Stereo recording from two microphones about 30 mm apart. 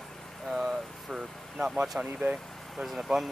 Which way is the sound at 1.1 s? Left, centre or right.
Centre.